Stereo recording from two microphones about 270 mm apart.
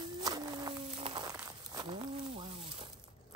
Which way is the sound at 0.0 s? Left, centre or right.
Centre.